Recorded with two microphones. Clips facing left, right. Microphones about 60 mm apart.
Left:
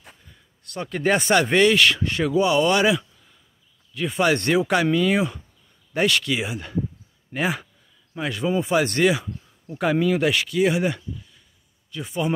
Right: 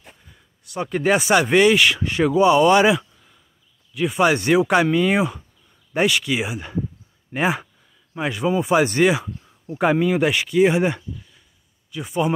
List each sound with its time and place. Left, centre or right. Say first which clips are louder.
0.7 s speech: right 2 dB; centre
3.9 s speech: right 3 dB; centre; by 11.1 s right
11.9 s speech: right 3 dB; centre